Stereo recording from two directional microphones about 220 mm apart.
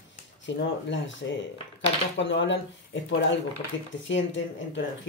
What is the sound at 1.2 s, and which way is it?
Speech, 55° left (ahead or behind).